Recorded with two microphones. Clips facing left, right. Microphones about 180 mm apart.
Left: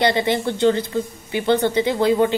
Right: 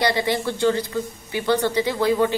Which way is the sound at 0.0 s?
25° left (ahead or behind).